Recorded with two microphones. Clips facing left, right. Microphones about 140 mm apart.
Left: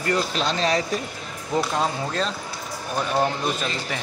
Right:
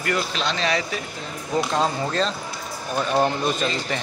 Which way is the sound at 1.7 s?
5° left (ahead or behind).